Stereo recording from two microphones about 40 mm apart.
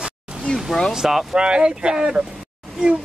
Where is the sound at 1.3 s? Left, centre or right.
Right.